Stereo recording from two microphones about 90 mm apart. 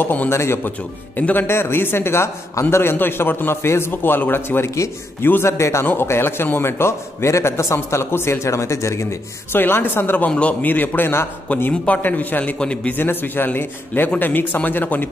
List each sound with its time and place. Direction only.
0.0 s a man's voice: 20° left (ahead or behind)
9.5 s a man's voice: 25° left (ahead or behind)